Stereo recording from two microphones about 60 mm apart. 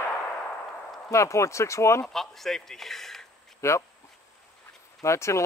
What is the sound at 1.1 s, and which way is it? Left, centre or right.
Speech, left.